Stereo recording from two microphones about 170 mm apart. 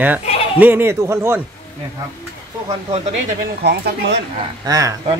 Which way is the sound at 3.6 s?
80° right.